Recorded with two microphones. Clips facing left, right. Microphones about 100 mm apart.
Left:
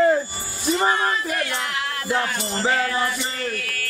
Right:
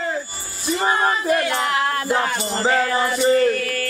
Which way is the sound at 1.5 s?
40° right (ahead or behind).